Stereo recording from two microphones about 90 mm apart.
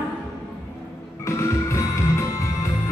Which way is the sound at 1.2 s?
35° left (ahead or behind).